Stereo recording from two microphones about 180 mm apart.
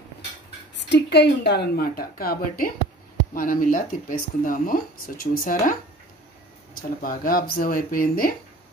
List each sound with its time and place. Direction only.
0.7 s a woman's voice: 75° left (ahead or behind); by 8.4 s 55° left (ahead or behind)